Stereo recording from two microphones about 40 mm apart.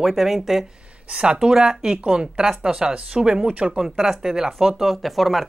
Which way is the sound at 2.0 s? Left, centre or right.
Right.